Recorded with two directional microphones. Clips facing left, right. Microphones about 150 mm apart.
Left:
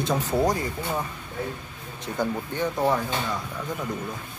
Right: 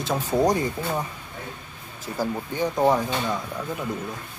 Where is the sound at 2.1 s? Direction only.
5° right (ahead or behind).